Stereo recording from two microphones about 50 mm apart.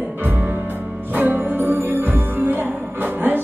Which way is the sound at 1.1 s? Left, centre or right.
Right.